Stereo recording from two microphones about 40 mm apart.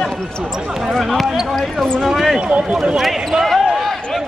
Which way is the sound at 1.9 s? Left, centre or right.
Centre.